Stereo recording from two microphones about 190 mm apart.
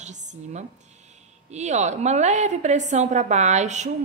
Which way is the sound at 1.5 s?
35° right (ahead or behind).